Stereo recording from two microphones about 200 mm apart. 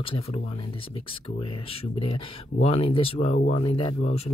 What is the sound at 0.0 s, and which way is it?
Speech, 25° left (ahead or behind).